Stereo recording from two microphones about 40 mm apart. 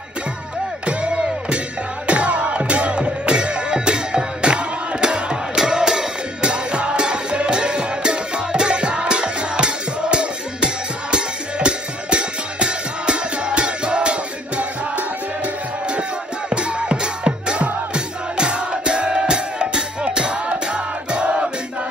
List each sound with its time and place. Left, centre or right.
2.0 s music: right